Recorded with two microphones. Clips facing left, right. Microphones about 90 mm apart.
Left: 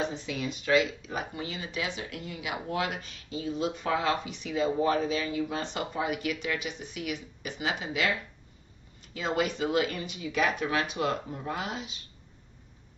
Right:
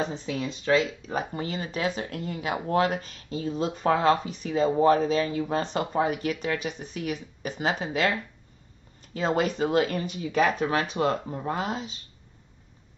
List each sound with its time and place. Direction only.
0.0 s speech: 35° right (ahead or behind)